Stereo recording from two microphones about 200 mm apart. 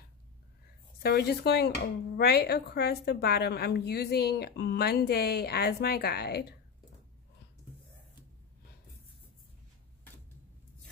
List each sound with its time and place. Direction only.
1.0 s a woman's voice: 55° left (ahead or behind)